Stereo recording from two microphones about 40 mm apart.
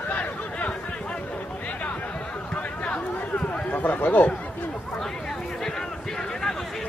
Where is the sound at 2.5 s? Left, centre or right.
Left.